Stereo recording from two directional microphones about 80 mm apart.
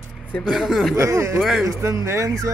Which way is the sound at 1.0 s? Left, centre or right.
Right.